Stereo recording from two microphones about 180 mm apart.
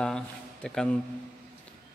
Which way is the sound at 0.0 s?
5° left (ahead or behind).